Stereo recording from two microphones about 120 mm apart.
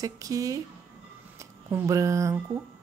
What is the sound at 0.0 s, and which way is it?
Speech, 30° right (ahead or behind).